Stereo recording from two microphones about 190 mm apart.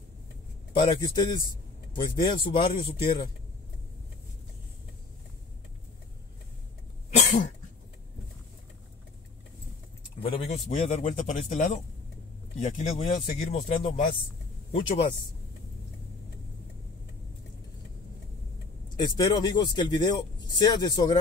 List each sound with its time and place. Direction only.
0.7 s speech: 25° left (ahead or behind)
7.2 s cough: 40° left (ahead or behind)
10.2 s speech: 30° left (ahead or behind)
10.5 s speech: 40° left (ahead or behind)
14.7 s speech: 30° left (ahead or behind)
18.9 s speech: 20° left (ahead or behind)